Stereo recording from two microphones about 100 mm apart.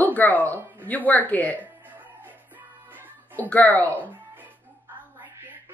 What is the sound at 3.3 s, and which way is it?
Speech, 15° left (ahead or behind).